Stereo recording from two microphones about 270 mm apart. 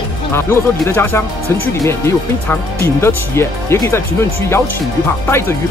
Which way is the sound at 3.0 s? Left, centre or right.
Centre.